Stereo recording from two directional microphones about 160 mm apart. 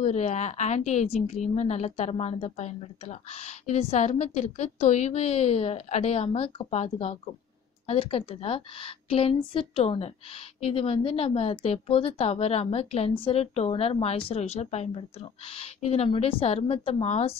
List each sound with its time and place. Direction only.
0.0 s a woman's voice: 45° left (ahead or behind)